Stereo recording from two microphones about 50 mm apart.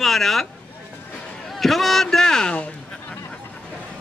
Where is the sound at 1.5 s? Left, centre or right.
Centre.